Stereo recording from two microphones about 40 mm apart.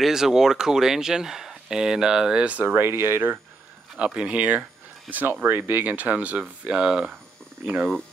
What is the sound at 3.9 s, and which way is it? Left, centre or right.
Speech, right.